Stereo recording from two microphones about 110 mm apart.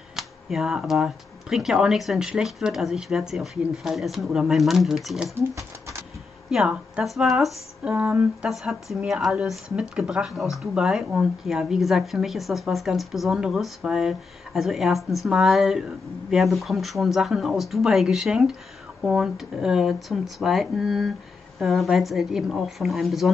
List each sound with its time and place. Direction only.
0.1 s speech: centre (ahead or behind)
5.5 s speech: 30° right (ahead or behind)
6.5 s speech: 5° right (ahead or behind)